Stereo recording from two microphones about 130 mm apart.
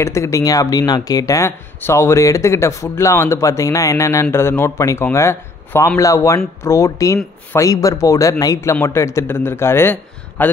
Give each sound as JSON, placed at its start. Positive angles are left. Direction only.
{"t": 0.0, "sound": "a man's voice", "side_deg": 20}